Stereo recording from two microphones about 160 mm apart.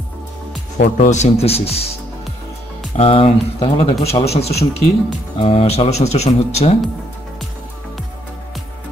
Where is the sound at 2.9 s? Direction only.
35° left (ahead or behind).